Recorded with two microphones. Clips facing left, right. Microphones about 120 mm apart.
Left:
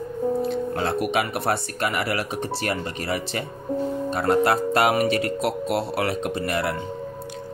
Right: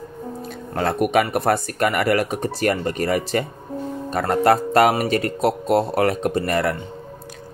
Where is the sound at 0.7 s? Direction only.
50° right (ahead or behind).